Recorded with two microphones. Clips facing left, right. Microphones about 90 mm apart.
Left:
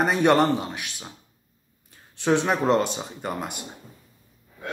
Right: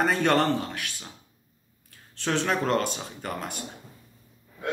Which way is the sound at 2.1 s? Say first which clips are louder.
Left 4 dB; 15° left (ahead or behind).